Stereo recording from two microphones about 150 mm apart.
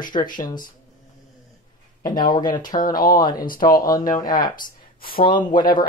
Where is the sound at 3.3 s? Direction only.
70° left (ahead or behind).